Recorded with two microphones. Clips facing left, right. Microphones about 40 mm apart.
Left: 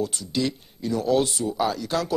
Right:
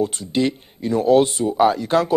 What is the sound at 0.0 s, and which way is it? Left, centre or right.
Speech, right.